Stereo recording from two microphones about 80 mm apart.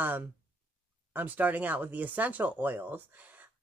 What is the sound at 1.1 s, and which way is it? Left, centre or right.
Speech, right.